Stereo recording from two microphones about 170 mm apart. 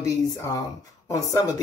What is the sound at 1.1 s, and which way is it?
Speech, 20° left (ahead or behind).